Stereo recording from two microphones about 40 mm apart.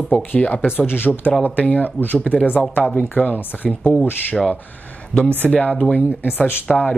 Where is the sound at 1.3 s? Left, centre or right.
Left.